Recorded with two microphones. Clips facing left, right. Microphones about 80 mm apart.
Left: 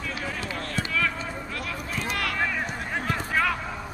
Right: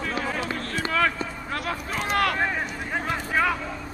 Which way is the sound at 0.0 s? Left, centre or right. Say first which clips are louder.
Right 4 dB; right.